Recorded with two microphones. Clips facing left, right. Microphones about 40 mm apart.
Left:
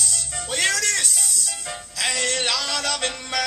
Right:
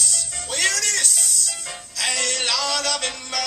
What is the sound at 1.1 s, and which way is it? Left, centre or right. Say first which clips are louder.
Music: right 1 dB; centre.